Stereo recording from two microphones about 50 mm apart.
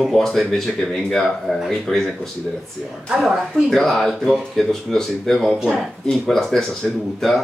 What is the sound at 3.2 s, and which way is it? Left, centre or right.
Speech, centre.